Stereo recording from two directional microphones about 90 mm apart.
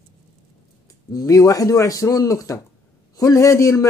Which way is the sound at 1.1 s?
45° left (ahead or behind).